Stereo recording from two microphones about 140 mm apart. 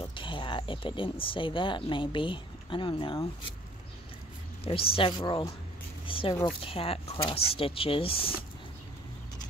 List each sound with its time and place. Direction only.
0.1 s speech: 35° left (ahead or behind)
4.6 s speech: 40° left (ahead or behind)